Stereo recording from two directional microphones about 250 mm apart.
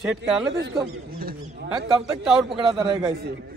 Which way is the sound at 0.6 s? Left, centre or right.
Right.